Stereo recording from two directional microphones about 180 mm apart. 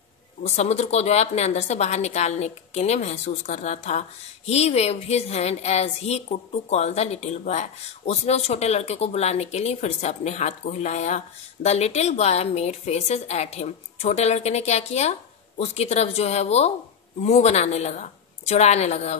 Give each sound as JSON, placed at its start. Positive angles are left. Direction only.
{"t": 0.4, "sound": "speech", "side_deg": 35}